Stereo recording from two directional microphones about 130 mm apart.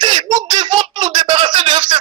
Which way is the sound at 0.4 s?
35° right (ahead or behind).